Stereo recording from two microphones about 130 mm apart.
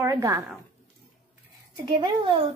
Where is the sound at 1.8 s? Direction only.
35° right (ahead or behind).